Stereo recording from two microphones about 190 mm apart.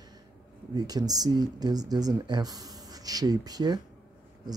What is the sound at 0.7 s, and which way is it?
Speech, 20° right (ahead or behind).